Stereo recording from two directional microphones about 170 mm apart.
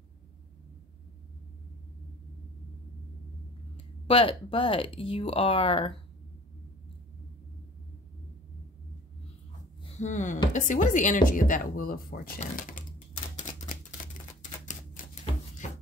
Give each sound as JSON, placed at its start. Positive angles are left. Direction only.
{"t": 3.7, "sound": "speech", "side_deg": 30}
{"t": 9.8, "sound": "speech", "side_deg": 45}
{"t": 13.4, "sound": "typewriter", "side_deg": 45}
{"t": 15.0, "sound": "a sound", "side_deg": 55}